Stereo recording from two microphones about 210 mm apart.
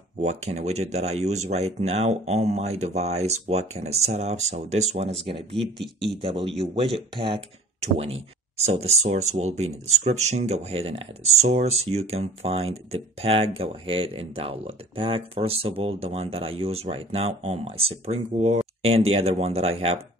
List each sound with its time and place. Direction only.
0.2 s speech: 30° right (ahead or behind)
5.8 s speech: centre (ahead or behind)
6.2 s speech: 25° right (ahead or behind)